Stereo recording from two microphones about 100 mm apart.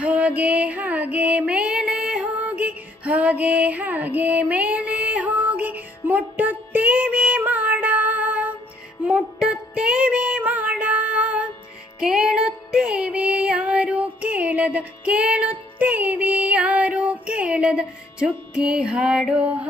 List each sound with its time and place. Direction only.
0.0 s music: 15° right (ahead or behind)